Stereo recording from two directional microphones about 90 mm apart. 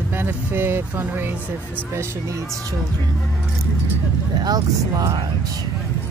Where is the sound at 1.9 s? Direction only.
30° right (ahead or behind).